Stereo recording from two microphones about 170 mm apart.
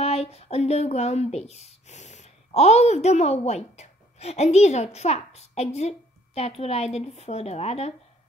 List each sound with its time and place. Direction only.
0.0 s a woman's voice: 35° left (ahead or behind)